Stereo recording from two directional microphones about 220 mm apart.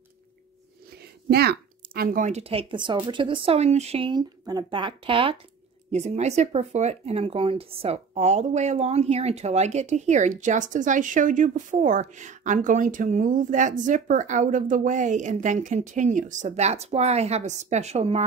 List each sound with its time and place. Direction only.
1.3 s speech: 45° right (ahead or behind); by 18.2 s 30° right (ahead or behind)